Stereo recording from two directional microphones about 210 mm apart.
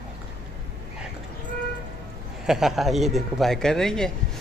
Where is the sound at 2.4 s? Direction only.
Centre (ahead or behind).